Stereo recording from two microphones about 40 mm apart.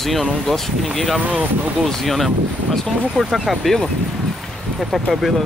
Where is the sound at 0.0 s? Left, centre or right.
Centre.